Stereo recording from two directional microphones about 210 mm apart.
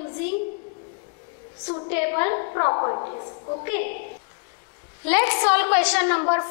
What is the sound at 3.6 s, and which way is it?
Speech, 15° left (ahead or behind).